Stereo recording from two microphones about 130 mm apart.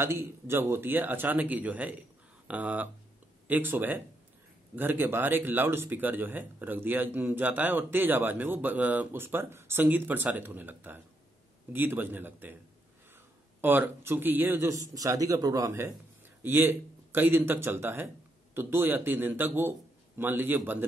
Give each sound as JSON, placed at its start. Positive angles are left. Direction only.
{"t": 0.0, "sound": "speech", "side_deg": -20}
{"t": 13.6, "sound": "a man's voice", "side_deg": -15}